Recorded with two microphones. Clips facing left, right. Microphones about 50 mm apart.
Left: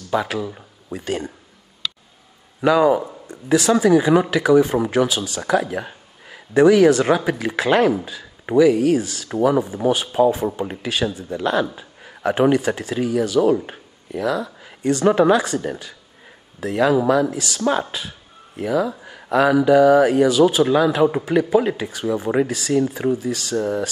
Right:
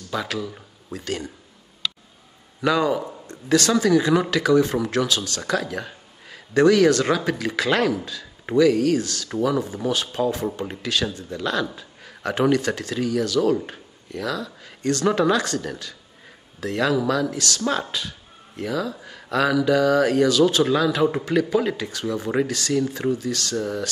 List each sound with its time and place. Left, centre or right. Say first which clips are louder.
0.1 s speech: left 5 dB; centre
2.6 s speech: left 5 dB; centre